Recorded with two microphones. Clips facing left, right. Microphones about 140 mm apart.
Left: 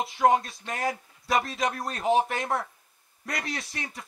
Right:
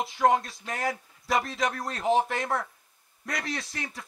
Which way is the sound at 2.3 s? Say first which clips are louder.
Even; 20° left (ahead or behind).